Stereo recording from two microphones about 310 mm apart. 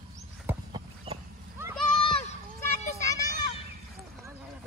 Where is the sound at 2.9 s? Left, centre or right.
Centre.